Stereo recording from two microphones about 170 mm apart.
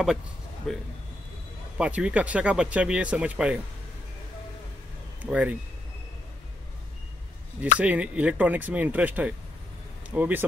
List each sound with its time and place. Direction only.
0.7 s speech: centre (ahead or behind)
5.2 s speech: 10° right (ahead or behind)
7.8 s speech: 10° right (ahead or behind)